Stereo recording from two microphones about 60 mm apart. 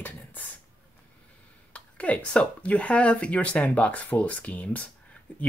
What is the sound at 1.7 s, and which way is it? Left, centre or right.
Speech, left.